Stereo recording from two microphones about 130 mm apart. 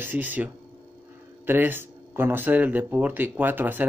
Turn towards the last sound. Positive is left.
turn(degrees=-15)  # may be behind; listen again after turning